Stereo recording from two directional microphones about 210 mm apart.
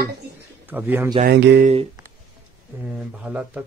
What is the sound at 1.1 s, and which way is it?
Mantra, 50° right (ahead or behind).